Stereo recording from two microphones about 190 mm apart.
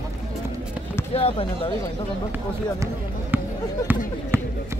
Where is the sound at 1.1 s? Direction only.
30° left (ahead or behind).